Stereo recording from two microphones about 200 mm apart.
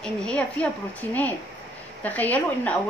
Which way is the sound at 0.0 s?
5° left (ahead or behind).